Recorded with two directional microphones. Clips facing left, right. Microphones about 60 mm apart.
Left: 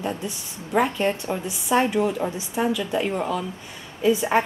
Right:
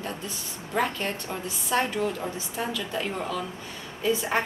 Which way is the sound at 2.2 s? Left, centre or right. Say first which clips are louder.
Left 6 dB; left.